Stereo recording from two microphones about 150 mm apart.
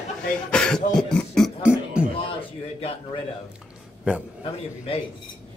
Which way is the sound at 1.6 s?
5° right (ahead or behind).